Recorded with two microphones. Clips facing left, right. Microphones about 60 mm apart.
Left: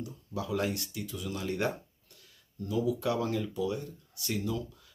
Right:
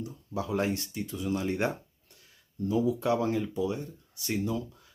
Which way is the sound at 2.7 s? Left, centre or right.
Right.